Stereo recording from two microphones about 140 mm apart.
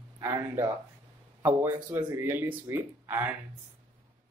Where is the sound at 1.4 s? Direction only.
10° right (ahead or behind).